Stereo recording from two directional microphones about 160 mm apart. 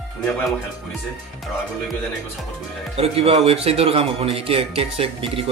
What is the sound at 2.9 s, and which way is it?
Speech, 40° right (ahead or behind).